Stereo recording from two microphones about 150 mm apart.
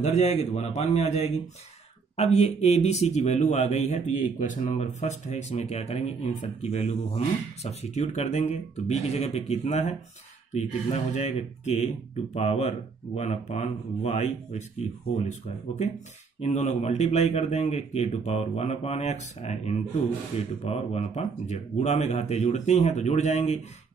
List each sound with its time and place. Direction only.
0.0 s a man's voice: 50° left (ahead or behind)